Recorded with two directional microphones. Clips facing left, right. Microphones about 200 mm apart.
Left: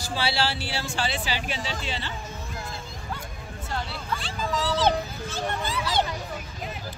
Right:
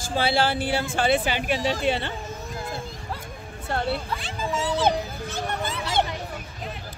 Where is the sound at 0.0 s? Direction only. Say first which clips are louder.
Right 4 dB; 50° right (ahead or behind).